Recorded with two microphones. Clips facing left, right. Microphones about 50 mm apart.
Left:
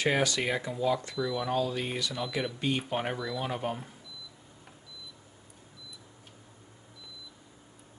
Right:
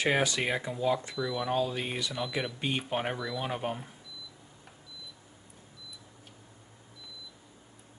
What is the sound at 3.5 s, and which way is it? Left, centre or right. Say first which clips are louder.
Speech: even; centre.